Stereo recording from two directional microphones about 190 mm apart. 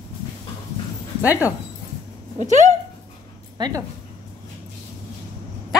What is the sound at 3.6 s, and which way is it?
Speech, 20° right (ahead or behind).